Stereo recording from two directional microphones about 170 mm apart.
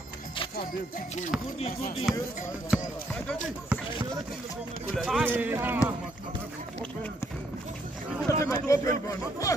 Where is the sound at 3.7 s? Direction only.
10° right (ahead or behind).